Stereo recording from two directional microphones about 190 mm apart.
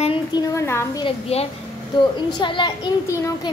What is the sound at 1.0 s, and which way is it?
A child's voice, 30° left (ahead or behind).